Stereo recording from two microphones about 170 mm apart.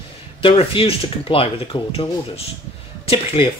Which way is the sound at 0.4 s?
30° left (ahead or behind).